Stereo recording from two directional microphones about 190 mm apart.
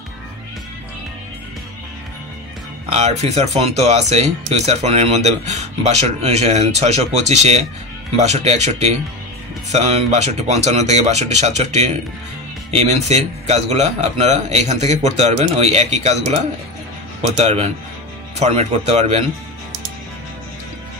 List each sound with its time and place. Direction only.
2.9 s speech: 35° right (ahead or behind)
17.4 s speech: 35° right (ahead or behind)